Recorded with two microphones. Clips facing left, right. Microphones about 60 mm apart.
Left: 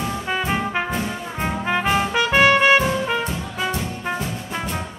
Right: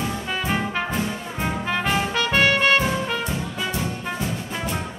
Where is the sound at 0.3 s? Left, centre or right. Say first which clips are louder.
Left 3 dB; centre.